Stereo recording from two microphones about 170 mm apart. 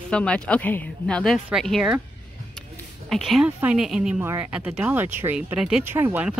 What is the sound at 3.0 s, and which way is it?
Speech, centre (ahead or behind).